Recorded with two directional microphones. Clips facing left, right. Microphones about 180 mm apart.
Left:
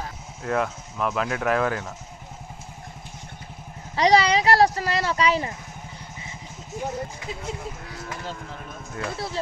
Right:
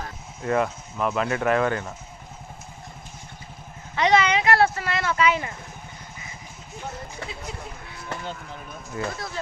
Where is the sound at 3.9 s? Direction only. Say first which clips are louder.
Left 2 dB; 35° left (ahead or behind).